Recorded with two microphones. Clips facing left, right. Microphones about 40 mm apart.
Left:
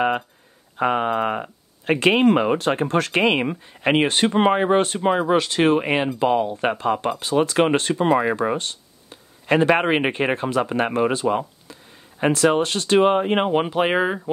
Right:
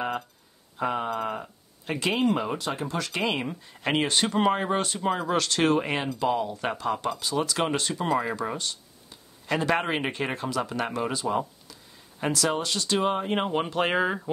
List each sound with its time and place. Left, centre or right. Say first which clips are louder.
0.7 s speech: left 7 dB; left
3.6 s speech: left 6 dB; left
13.6 s speech: left 5 dB; centre